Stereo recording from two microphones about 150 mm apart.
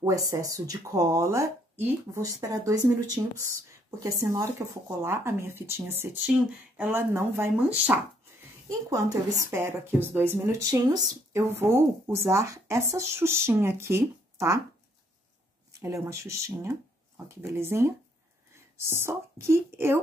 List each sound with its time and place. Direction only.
0.0 s a woman's voice: 20° right (ahead or behind)
8.6 s a woman's voice: 20° right (ahead or behind)
15.8 s a woman's voice: 20° right (ahead or behind)